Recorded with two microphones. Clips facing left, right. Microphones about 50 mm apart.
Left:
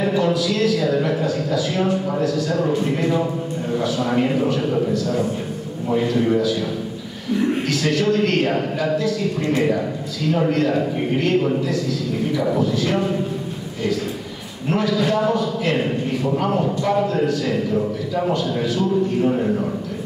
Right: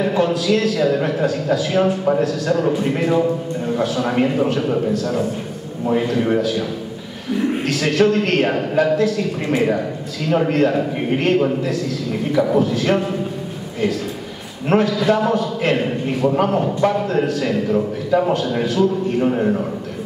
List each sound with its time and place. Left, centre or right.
0.1 s a man's voice: right
3.7 s a man's voice: right
7.6 s a man's voice: right
10.3 s a man's voice: right
14.7 s a man's voice: right